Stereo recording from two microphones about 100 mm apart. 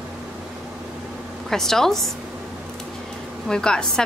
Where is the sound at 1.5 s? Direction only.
5° left (ahead or behind).